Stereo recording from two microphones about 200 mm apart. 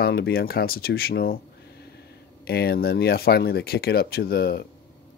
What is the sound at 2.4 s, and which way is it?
Speech, 50° left (ahead or behind).